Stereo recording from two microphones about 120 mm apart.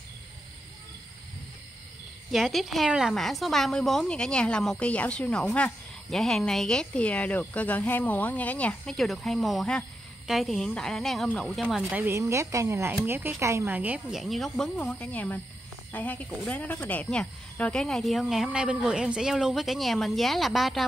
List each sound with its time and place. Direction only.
2.3 s a woman's voice: centre (ahead or behind)
12.1 s speech: 25° right (ahead or behind)
14.1 s a woman's voice: centre (ahead or behind)
14.8 s a woman's voice: 15° left (ahead or behind)